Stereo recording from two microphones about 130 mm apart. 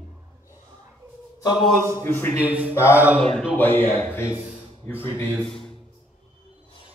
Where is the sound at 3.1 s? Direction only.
5° left (ahead or behind).